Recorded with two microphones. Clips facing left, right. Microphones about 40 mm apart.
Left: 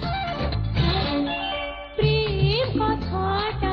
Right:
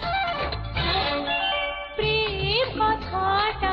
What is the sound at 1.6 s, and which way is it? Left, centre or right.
Music, right.